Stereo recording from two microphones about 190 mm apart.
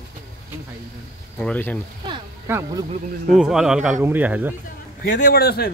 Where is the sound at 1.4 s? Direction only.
5° left (ahead or behind).